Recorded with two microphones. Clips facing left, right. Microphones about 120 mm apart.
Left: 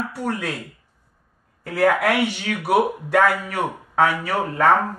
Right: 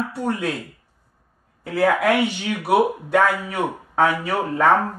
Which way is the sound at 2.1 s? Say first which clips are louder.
Right 1 dB; 20° right (ahead or behind).